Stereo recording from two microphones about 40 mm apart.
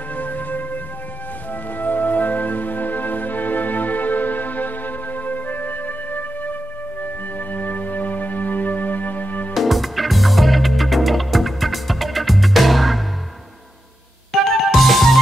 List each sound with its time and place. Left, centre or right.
0.1 s music: left
9.5 s music: centre
14.5 s music: centre